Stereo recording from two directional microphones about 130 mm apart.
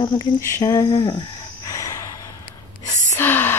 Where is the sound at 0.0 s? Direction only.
35° left (ahead or behind).